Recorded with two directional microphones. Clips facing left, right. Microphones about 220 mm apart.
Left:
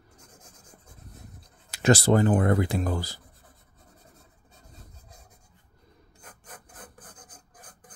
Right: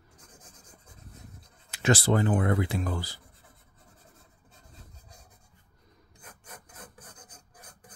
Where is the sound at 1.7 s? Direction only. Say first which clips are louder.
Left 4 dB; 40° left (ahead or behind).